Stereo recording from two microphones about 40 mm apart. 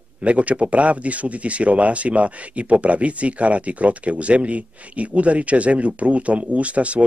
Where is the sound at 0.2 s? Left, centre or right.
Right.